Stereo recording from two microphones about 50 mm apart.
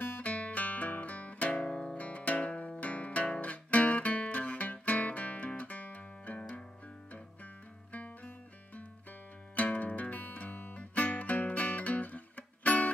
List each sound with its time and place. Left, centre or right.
0.0 s music: left
1.6 s music: centre
2.0 s music: left
7.9 s music: left
9.6 s music: left